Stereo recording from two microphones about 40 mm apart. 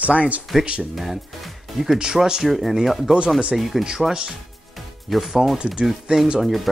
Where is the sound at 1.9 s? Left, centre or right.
Centre.